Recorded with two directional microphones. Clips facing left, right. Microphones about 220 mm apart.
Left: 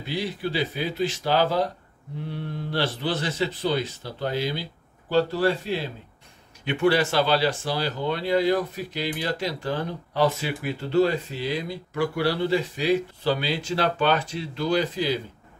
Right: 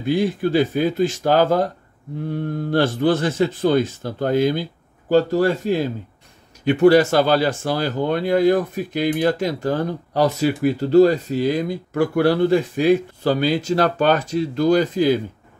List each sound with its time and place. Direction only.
0.0 s speech: 50° right (ahead or behind)